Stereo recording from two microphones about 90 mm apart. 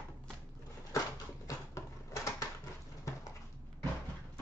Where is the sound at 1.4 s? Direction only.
40° left (ahead or behind).